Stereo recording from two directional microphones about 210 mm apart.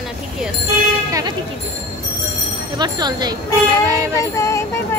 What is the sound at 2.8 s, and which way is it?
Speech, 20° right (ahead or behind).